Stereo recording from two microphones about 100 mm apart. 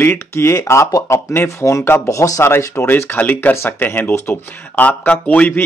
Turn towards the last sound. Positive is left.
turn(degrees=15)  # may be behind; listen again after turning